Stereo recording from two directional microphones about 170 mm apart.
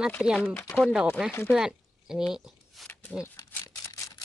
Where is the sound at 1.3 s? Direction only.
10° left (ahead or behind).